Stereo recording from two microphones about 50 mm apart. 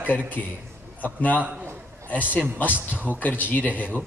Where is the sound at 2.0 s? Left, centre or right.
Left.